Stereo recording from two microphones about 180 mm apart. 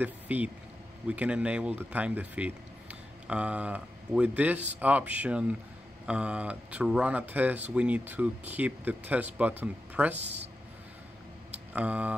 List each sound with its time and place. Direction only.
0.0 s speech: 10° right (ahead or behind)
10.1 s speech: 35° right (ahead or behind)
11.7 s speech: 5° right (ahead or behind)